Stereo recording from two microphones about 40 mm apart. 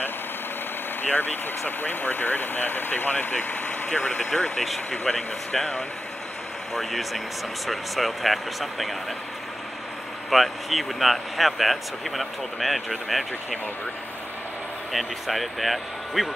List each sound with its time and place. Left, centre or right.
1.0 s speech: left
3.9 s speech: left
4.2 s speech: centre
6.7 s speech: centre
10.3 s speech: centre
14.9 s speech: centre